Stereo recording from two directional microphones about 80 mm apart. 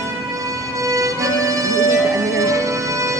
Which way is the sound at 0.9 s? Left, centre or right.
Right.